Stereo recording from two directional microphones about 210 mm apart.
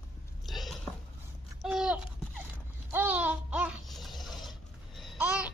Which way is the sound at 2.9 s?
10° right (ahead or behind).